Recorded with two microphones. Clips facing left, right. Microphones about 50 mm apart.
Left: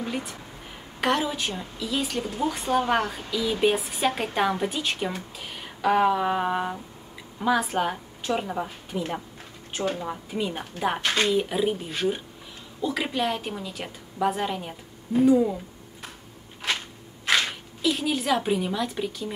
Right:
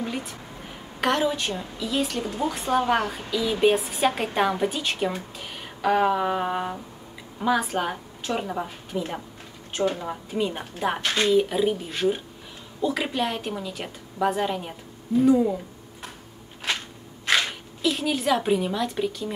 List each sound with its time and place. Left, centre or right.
0.0 s a woman's voice: centre
5.4 s a sound: centre
7.3 s a woman's voice: centre
17.8 s a woman's voice: centre